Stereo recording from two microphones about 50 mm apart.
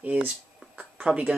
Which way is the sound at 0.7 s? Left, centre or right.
Right.